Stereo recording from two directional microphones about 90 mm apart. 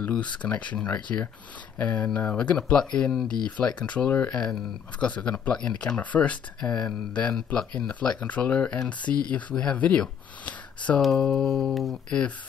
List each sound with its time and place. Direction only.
0.1 s speech: 15° left (ahead or behind)
11.0 s speech: 5° left (ahead or behind)